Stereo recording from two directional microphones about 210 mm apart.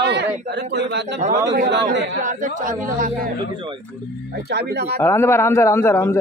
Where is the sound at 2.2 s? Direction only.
35° right (ahead or behind).